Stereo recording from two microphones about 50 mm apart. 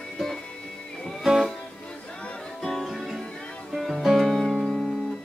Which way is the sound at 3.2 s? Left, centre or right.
Centre.